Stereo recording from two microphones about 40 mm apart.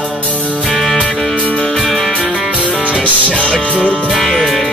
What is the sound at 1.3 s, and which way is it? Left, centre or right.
Music, left.